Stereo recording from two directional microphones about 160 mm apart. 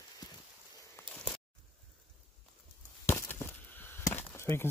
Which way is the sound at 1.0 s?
10° left (ahead or behind).